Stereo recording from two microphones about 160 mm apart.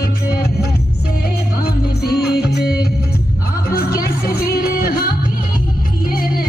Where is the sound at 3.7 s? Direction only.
70° left (ahead or behind).